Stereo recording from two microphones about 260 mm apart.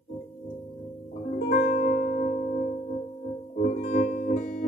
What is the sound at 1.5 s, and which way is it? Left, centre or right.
Music, left.